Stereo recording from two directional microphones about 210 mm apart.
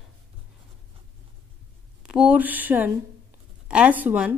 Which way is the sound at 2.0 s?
5° right (ahead or behind).